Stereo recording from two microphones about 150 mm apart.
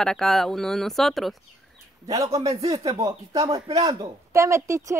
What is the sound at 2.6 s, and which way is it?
Speech, 25° right (ahead or behind).